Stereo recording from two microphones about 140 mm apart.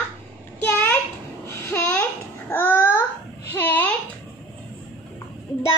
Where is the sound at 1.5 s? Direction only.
20° left (ahead or behind).